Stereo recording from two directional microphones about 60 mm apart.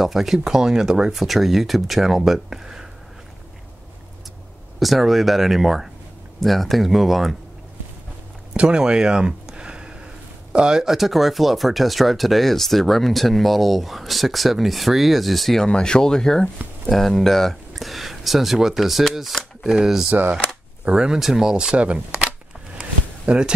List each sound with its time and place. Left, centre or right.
0.0 s speech: centre
4.7 s speech: centre
8.5 s a sound: centre
10.5 s speech: centre
15.7 s speech: centre
21.7 s speech: right
22.8 s a sound: centre